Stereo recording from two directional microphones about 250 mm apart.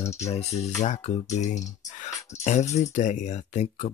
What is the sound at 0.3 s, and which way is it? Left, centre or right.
Speech, left.